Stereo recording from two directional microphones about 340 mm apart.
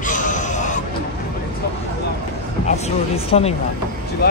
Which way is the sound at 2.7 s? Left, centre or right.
Centre.